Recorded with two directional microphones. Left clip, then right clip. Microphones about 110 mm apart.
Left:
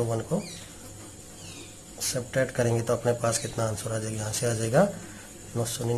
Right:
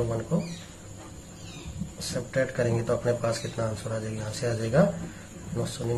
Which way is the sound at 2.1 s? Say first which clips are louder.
Even; 40° left (ahead or behind).